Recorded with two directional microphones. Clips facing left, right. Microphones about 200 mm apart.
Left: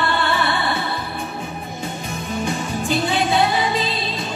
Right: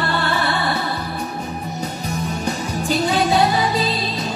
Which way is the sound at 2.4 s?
40° right (ahead or behind).